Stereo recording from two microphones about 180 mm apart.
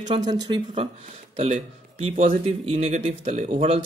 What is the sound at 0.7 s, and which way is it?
Speech, 40° right (ahead or behind).